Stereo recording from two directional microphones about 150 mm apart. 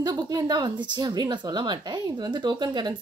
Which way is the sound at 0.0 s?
25° right (ahead or behind).